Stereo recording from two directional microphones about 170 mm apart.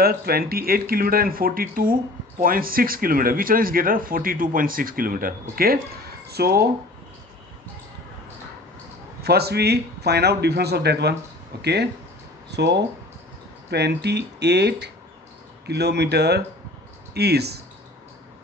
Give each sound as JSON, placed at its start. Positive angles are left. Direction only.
{"t": 0.0, "sound": "speech", "side_deg": -65}
{"t": 6.2, "sound": "speech", "side_deg": -70}
{"t": 9.2, "sound": "a man's voice", "side_deg": -70}
{"t": 12.4, "sound": "speech", "side_deg": -85}
{"t": 13.7, "sound": "a man's voice", "side_deg": -75}